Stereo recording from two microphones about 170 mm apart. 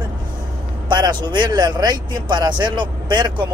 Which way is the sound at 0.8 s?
25° right (ahead or behind).